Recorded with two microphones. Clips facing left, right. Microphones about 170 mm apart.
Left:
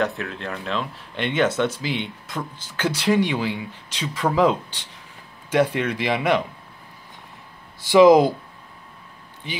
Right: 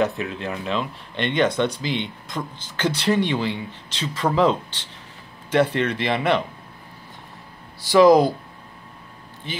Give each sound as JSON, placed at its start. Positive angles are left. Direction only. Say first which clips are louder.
{"t": 0.0, "sound": "speech", "louder": "right 2 dB", "side_deg": 0}
{"t": 7.8, "sound": "speech", "louder": "left 1 dB", "side_deg": 20}
{"t": 9.5, "sound": "speech", "louder": "even", "side_deg": 15}